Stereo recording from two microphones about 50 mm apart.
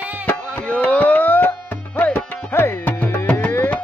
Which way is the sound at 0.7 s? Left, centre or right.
Left.